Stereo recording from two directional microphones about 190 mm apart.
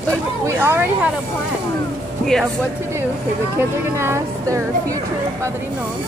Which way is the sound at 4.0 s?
15° right (ahead or behind).